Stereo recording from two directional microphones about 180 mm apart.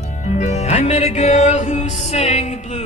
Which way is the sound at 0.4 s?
40° left (ahead or behind).